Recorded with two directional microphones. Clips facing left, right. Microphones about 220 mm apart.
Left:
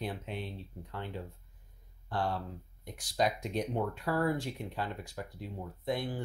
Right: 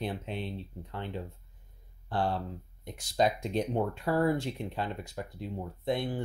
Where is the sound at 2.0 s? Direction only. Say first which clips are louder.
Right 3 dB; 30° right (ahead or behind).